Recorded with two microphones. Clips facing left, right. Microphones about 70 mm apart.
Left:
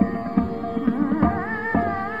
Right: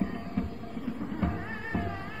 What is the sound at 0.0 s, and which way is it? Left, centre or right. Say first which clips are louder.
Music: left 11 dB; left.